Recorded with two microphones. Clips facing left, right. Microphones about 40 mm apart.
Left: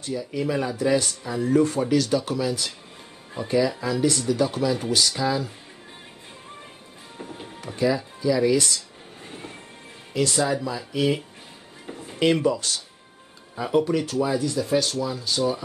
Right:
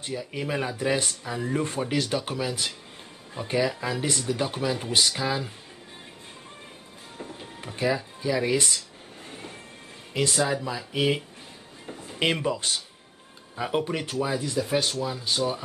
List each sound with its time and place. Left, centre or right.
0.3 s speech: right
7.2 s music: left
7.6 s speech: right
9.2 s music: centre
10.3 s speech: centre
10.9 s speech: right
12.2 s speech: right
14.1 s speech: centre
14.4 s speech: right